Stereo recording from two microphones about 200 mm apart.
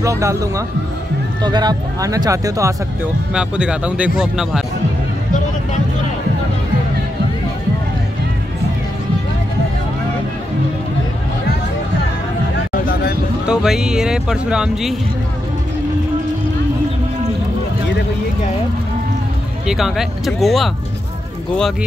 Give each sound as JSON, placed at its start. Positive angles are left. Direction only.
{"t": 0.0, "sound": "speech", "side_deg": -15}
{"t": 3.3, "sound": "speech", "side_deg": -5}
{"t": 12.5, "sound": "a sound", "side_deg": 50}
{"t": 13.5, "sound": "speech", "side_deg": -5}
{"t": 19.6, "sound": "speech", "side_deg": 0}